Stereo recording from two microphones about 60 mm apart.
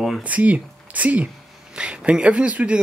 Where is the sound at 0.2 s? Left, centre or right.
Right.